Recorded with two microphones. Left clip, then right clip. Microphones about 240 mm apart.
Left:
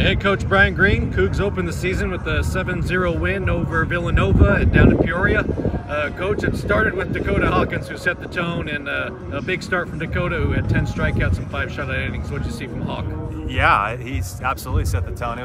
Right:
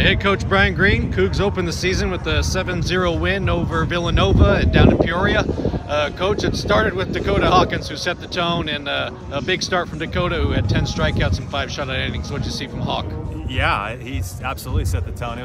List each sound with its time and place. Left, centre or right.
0.0 s speech: centre
13.6 s speech: centre